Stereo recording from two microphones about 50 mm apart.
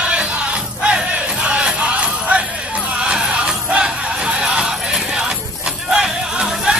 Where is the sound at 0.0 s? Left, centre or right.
Right.